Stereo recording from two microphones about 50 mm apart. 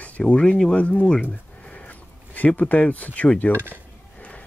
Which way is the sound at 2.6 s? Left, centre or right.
Left.